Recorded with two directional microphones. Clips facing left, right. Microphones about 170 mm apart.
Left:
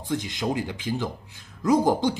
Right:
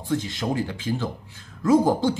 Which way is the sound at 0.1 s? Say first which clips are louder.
Right 1 dB; 20° left (ahead or behind).